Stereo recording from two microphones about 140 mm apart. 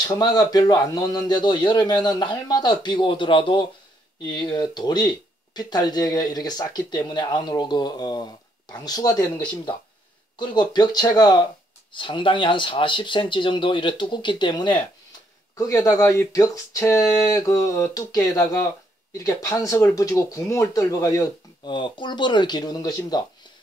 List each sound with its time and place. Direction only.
0.0 s speech: 30° left (ahead or behind)
21.6 s speech: 35° left (ahead or behind)